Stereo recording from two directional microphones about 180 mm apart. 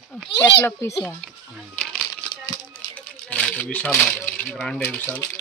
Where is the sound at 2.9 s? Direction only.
5° left (ahead or behind).